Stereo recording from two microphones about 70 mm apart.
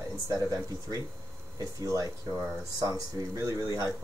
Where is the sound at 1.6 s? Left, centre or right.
Right.